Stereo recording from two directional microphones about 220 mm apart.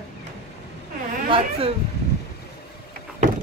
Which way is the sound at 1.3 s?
25° right (ahead or behind).